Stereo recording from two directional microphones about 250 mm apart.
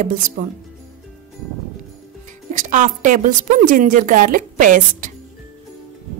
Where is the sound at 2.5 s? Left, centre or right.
Right.